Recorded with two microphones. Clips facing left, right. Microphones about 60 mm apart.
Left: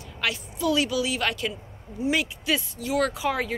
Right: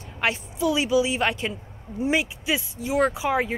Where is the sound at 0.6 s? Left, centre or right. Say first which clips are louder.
Right 2 dB; centre.